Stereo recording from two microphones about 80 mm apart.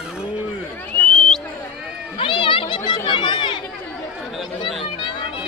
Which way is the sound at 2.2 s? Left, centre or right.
Left.